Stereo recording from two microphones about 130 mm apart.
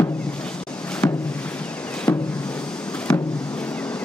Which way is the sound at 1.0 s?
10° left (ahead or behind).